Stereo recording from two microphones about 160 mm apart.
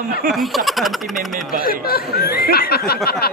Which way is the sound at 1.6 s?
70° left (ahead or behind).